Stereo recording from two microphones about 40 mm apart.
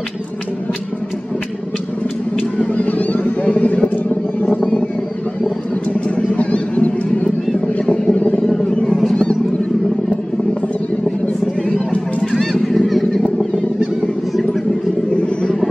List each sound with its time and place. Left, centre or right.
2.3 s a sound: left
3.9 s vehicle: left
4.5 s vehicle: left
5.9 s a sound: left
8.1 s vehicle: left
9.1 s vehicle: left
11.9 s a sound: left
12.4 s honk: centre
15.1 s vehicle: left